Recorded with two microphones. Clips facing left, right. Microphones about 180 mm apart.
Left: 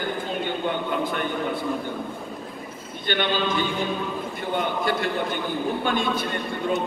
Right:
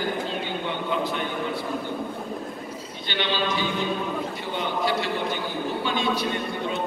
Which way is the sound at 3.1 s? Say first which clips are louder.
Left 3 dB; 50° left (ahead or behind).